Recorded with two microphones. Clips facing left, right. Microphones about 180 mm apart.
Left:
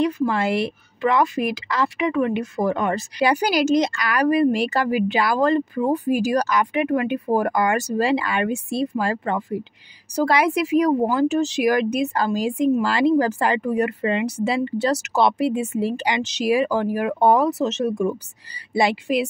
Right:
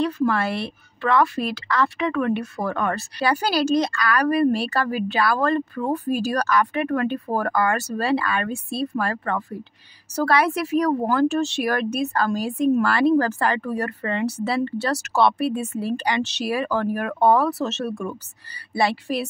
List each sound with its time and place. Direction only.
0.0 s speech: 15° left (ahead or behind)